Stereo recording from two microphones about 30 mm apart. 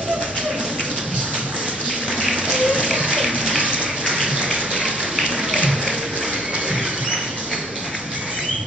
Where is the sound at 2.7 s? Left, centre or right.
Right.